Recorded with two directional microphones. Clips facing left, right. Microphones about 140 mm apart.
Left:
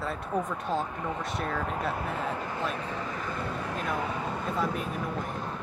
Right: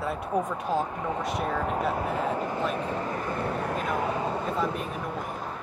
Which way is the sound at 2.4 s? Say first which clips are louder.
Right 4 dB; 45° right (ahead or behind).